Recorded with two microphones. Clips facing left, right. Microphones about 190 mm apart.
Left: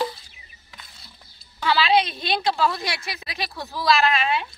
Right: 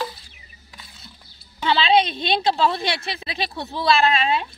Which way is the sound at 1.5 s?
25° right (ahead or behind).